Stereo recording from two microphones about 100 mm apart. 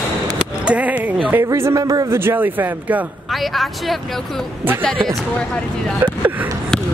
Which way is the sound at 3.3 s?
Centre (ahead or behind).